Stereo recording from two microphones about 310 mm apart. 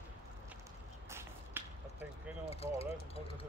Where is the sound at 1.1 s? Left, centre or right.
Centre.